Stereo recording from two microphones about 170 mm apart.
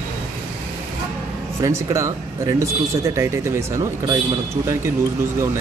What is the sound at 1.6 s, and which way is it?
Speech, 15° right (ahead or behind).